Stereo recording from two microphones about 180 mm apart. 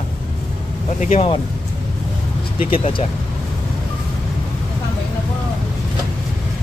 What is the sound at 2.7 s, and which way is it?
Speech, 30° left (ahead or behind).